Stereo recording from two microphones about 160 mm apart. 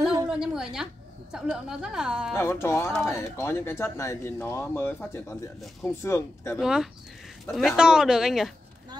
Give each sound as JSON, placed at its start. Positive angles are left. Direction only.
{"t": 0.3, "sound": "a sound", "side_deg": -5}
{"t": 1.3, "sound": "a woman's voice", "side_deg": -5}
{"t": 2.3, "sound": "speech", "side_deg": 15}
{"t": 6.6, "sound": "a woman's voice", "side_deg": -5}